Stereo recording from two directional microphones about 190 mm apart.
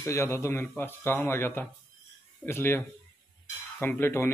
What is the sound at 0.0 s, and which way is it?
Speech, 15° left (ahead or behind).